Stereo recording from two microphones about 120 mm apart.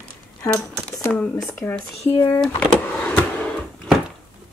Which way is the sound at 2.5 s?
15° left (ahead or behind).